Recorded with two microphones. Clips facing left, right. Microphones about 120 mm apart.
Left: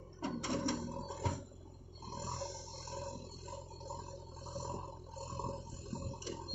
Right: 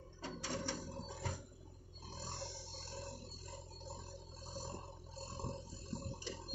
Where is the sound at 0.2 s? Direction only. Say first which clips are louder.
Left 7 dB; 60° left (ahead or behind).